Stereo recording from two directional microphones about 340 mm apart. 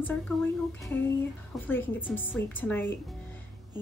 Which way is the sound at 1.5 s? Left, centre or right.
Centre.